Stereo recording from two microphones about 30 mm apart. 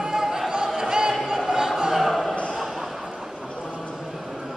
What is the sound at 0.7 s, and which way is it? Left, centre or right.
Music, right.